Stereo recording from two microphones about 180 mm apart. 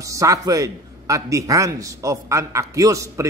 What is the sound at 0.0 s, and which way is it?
A man's voice, 20° right (ahead or behind).